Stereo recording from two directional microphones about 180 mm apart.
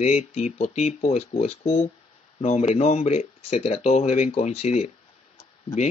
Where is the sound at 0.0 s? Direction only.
35° left (ahead or behind).